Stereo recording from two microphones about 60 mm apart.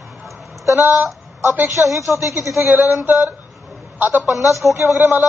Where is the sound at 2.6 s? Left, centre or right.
Right.